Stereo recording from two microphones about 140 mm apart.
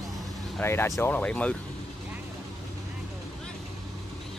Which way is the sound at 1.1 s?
10° left (ahead or behind).